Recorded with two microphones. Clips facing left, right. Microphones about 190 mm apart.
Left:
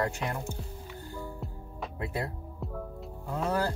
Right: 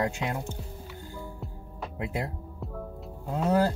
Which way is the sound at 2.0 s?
20° right (ahead or behind).